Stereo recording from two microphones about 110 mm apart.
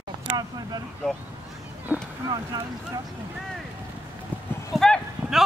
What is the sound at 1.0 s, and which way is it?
Vehicle, 5° left (ahead or behind).